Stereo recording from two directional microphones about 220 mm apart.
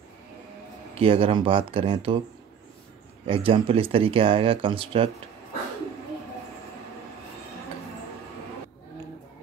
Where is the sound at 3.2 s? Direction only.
25° right (ahead or behind).